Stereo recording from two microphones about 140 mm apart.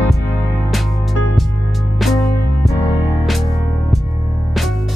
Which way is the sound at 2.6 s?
25° left (ahead or behind).